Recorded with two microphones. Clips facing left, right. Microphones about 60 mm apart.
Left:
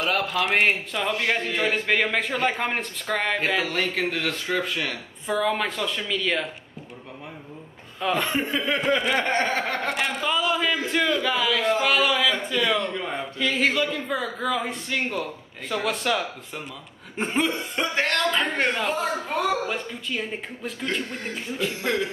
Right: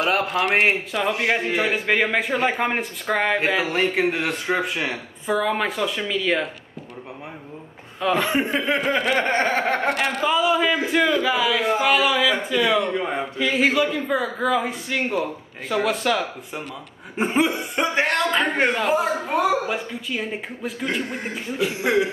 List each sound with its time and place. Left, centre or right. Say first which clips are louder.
0.7 s speech: right 3 dB; centre
3.3 s speech: right 3 dB; right
5.2 s speech: right 2 dB; centre
8.0 s speech: right 3 dB; centre
8.3 s speech: right 4 dB; right
8.9 s a sound: right 1 dB; right
9.2 s a sound: right 3 dB; right
9.8 s speech: right 4 dB; centre